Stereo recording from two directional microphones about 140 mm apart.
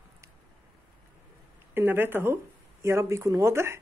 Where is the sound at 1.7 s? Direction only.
15° right (ahead or behind).